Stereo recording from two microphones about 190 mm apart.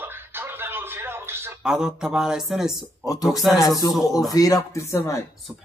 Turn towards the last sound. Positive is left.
turn(degrees=15)  # may be behind; listen again after turning